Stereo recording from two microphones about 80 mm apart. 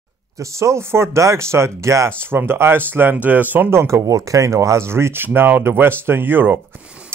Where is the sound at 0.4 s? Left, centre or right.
Right.